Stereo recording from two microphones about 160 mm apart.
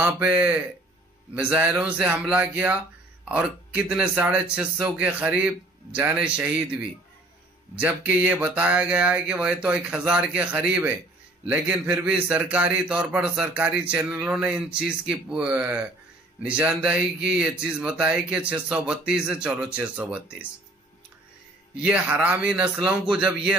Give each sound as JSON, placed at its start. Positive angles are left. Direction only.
{"t": 0.0, "sound": "speech", "side_deg": -10}
{"t": 21.7, "sound": "speech", "side_deg": -5}